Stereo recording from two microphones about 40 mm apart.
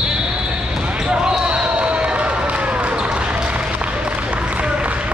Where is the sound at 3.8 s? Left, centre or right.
Right.